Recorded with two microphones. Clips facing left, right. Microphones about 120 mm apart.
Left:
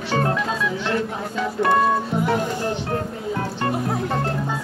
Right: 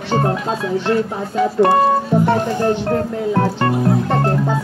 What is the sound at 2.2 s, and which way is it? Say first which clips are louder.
Speech: right 5 dB; 60° right (ahead or behind).